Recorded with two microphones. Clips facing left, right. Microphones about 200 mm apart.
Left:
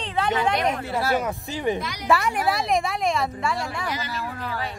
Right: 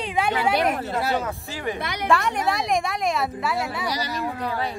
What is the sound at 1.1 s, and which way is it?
Speech, 20° left (ahead or behind).